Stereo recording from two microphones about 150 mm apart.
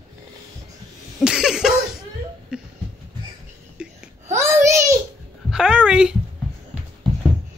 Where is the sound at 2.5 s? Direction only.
5° right (ahead or behind).